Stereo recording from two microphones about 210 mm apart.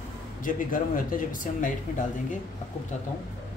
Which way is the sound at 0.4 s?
40° left (ahead or behind).